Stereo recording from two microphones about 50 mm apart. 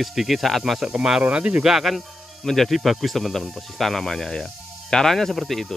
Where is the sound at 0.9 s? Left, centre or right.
Centre.